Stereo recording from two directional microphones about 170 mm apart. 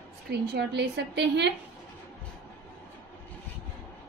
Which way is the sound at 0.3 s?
85° right.